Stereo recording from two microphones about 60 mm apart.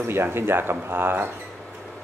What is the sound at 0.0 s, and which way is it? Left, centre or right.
Speech, right.